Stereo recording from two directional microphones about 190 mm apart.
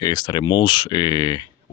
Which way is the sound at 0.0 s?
20° left (ahead or behind).